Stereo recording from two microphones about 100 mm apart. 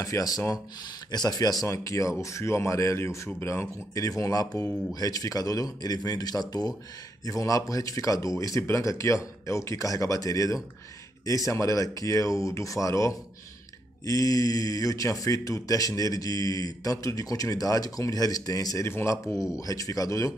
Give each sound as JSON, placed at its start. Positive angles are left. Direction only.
{"t": 0.0, "sound": "speech", "side_deg": 35}
{"t": 1.6, "sound": "speech", "side_deg": 30}
{"t": 18.9, "sound": "speech", "side_deg": 25}